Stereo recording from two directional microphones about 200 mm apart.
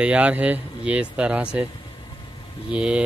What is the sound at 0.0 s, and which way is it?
Speech, 5° right (ahead or behind).